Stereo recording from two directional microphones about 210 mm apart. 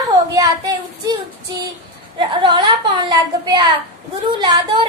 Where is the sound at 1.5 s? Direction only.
20° right (ahead or behind).